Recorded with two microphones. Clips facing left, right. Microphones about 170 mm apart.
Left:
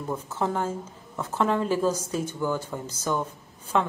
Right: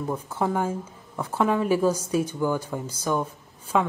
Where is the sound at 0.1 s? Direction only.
10° right (ahead or behind).